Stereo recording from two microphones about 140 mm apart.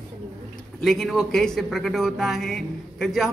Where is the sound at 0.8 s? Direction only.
Centre (ahead or behind).